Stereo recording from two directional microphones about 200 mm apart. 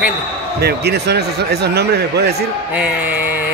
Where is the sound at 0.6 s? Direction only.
55° right (ahead or behind).